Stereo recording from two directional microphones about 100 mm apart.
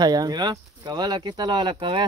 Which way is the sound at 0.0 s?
40° right (ahead or behind).